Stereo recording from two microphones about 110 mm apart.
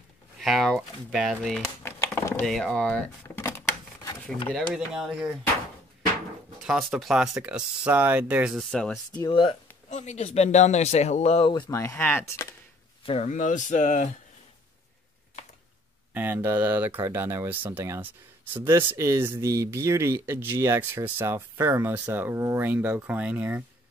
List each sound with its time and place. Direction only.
0.4 s speech: centre (ahead or behind)
1.8 s typing: 25° left (ahead or behind)
2.4 s speech: 5° left (ahead or behind)
3.3 s a sound: 25° left (ahead or behind)
4.6 s speech: 5° right (ahead or behind)
6.6 s speech: 5° right (ahead or behind)
8.5 s speech: 5° left (ahead or behind)
9.3 s speech: 50° left (ahead or behind)
9.8 s speech: 90° left; by 11.5 s 70° left (ahead or behind)
11.7 s speech: 25° left (ahead or behind)
13.0 s speech: 75° left (ahead or behind)
13.7 s speech: 90° left
16.1 s speech: 15° right (ahead or behind)